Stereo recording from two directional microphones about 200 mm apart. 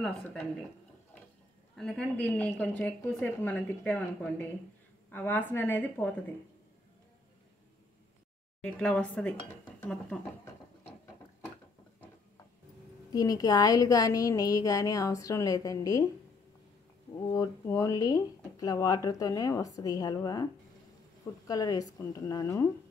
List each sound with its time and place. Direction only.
0.0 s a woman's voice: 5° left (ahead or behind)
1.8 s speech: 5° left (ahead or behind)
8.5 s a woman's voice: 5° left (ahead or behind)
13.1 s speech: 20° left (ahead or behind)
17.3 s speech: 15° left (ahead or behind)
21.5 s speech: 20° left (ahead or behind)